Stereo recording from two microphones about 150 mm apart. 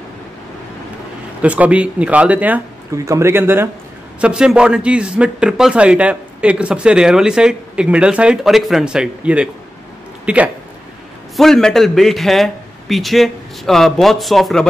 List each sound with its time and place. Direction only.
1.4 s a man's voice: 10° right (ahead or behind)
11.3 s a man's voice: 5° left (ahead or behind)